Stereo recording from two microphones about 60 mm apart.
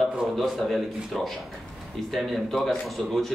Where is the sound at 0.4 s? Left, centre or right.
Centre.